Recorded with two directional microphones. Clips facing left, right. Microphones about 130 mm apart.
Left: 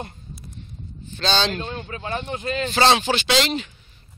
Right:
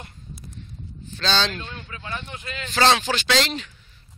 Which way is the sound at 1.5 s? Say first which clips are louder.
Left 6 dB; 35° left (ahead or behind).